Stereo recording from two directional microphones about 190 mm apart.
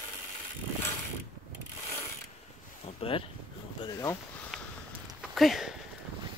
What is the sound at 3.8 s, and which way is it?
Speech, 15° left (ahead or behind).